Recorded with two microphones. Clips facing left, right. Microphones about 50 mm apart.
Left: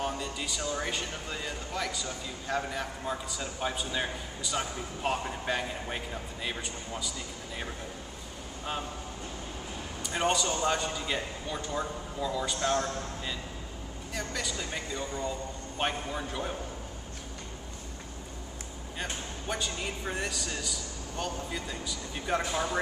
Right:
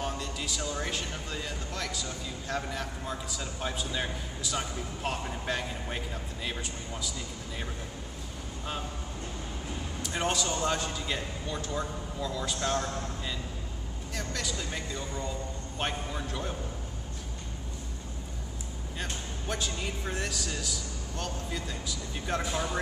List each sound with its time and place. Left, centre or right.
0.0 s a man's voice: centre
10.0 s a man's voice: centre
18.9 s a man's voice: centre